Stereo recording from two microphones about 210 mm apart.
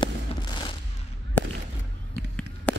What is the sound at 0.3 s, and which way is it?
Fireworks, 30° left (ahead or behind).